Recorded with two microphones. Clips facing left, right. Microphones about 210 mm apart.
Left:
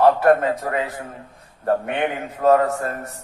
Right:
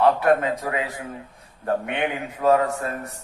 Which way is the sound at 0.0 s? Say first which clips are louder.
Left 3 dB; 45° left (ahead or behind).